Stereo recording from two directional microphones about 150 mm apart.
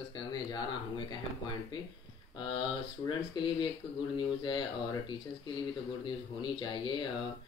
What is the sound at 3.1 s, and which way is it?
A man's voice, 30° left (ahead or behind).